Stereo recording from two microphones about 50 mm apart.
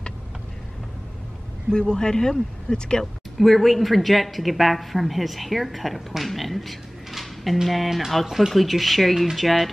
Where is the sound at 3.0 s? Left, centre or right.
Centre.